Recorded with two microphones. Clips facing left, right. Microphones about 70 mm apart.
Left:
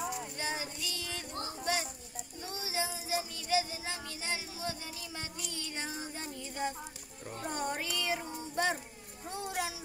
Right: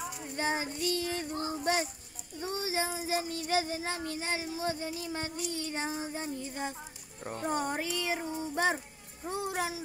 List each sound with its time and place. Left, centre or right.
0.4 s child singing: right
1.6 s a sound: right
2.5 s child singing: right
5.5 s speech: right